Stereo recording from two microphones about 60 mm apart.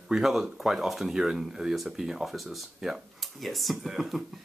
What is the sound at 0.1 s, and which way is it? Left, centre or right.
Speech, centre.